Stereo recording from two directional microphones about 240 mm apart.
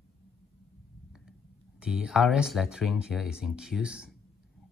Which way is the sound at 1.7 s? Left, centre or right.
Centre.